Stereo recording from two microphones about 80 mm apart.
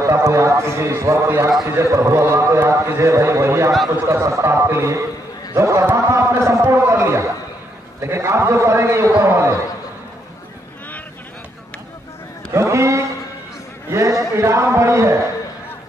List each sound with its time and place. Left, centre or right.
0.0 s a man's voice: right
12.4 s a man's voice: right